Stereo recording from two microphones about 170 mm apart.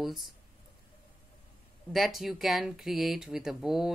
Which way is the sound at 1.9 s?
Centre (ahead or behind).